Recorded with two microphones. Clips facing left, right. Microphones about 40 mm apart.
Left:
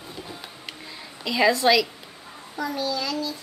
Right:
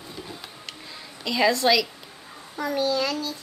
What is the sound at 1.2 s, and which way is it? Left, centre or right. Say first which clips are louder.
Speech: left 1 dB; centre.